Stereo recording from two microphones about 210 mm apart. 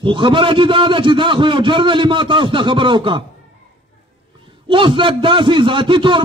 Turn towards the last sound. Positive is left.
turn(degrees=-25)  # may be behind; listen again after turning